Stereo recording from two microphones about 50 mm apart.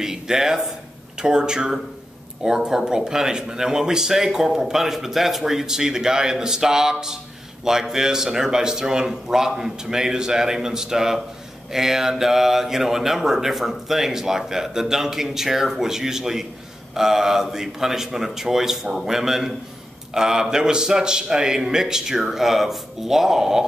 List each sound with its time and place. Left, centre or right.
0.0 s speech: centre